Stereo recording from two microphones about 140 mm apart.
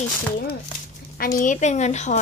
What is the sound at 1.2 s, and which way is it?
A woman's voice, 80° left.